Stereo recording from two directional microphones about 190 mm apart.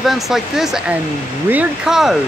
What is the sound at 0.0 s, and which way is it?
Speech, centre (ahead or behind).